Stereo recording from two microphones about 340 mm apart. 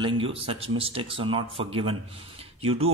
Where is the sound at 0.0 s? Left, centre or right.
Centre.